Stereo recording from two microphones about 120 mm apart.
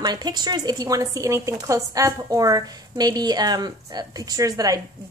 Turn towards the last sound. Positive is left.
turn(degrees=-30)  # may be behind; listen again after turning